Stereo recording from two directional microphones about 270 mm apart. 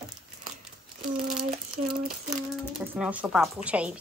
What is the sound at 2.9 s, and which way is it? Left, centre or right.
Speech, centre.